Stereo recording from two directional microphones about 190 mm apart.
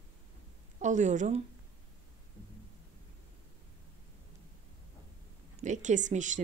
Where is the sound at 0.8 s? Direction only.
40° right (ahead or behind).